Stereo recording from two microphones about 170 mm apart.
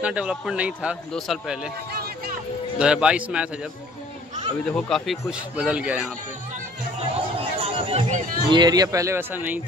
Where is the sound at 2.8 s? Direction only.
5° right (ahead or behind).